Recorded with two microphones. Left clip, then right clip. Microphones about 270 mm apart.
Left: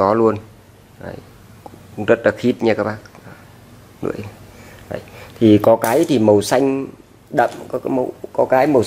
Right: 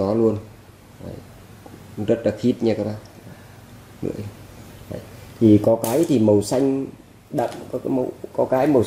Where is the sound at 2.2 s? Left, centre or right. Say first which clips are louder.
Left 5 dB; centre.